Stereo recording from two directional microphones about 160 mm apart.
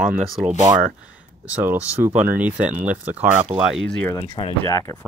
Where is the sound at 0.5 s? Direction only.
20° right (ahead or behind); by 3.8 s 5° right (ahead or behind).